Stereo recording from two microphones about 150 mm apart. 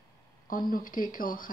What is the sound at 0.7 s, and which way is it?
Speech, 70° left (ahead or behind).